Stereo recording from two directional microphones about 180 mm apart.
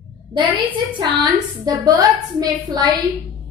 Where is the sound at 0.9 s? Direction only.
25° right (ahead or behind).